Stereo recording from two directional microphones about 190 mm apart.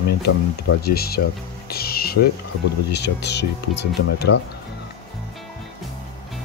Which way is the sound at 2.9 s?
65° left (ahead or behind).